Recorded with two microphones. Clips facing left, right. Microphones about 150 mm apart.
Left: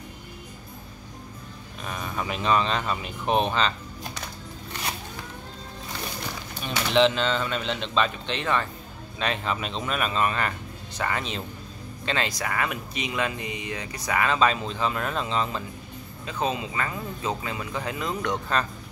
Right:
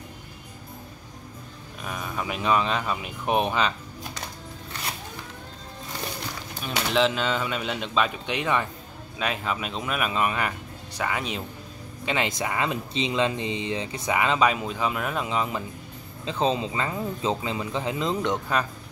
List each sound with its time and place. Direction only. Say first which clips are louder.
1.8 s speech: even; 5° right (ahead or behind)
6.6 s speech: left 2 dB; 5° right (ahead or behind)
12.1 s speech: right 1 dB; 20° right (ahead or behind)
16.3 s speech: right 3 dB; 30° right (ahead or behind)